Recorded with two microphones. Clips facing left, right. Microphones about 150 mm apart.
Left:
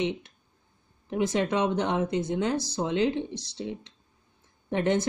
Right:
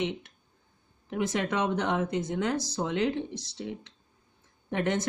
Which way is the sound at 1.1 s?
25° left (ahead or behind).